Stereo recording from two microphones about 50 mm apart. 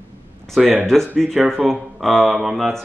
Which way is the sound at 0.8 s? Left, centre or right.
Centre.